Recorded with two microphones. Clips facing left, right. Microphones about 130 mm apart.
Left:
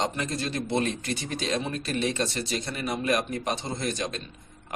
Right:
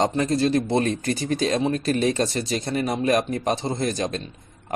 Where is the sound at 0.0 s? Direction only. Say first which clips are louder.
Right 9 dB; 35° right (ahead or behind).